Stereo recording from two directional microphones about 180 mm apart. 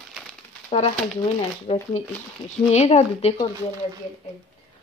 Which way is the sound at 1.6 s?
35° left (ahead or behind).